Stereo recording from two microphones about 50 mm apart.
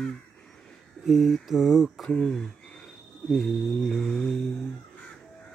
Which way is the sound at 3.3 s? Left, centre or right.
Centre.